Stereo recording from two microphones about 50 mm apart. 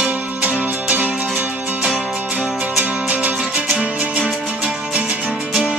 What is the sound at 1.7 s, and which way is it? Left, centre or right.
Music, centre.